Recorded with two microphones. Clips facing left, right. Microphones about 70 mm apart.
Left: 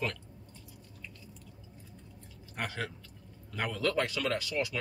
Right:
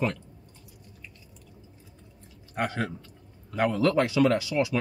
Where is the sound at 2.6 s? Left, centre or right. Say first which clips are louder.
Right 8 dB; right.